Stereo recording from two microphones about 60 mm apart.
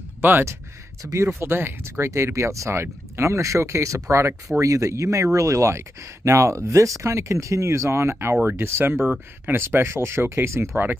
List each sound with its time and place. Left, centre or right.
0.2 s speech: right
1.1 s speech: right
1.5 s speech: right
8.9 s speech: centre
9.5 s speech: right